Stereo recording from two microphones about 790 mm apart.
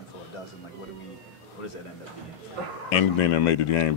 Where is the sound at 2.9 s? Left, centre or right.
Left.